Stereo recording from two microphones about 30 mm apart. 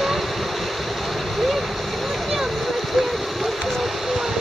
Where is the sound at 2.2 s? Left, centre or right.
Centre.